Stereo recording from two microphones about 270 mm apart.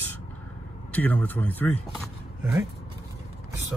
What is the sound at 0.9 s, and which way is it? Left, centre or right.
Speech, centre.